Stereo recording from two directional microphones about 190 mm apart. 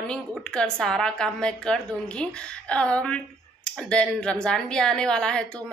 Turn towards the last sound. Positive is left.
turn(degrees=5)  # may be behind; listen again after turning